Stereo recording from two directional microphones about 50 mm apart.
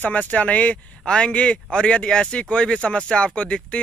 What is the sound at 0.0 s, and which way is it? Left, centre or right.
Speech, left.